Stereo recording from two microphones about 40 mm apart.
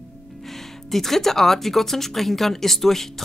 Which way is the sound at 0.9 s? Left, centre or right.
Centre.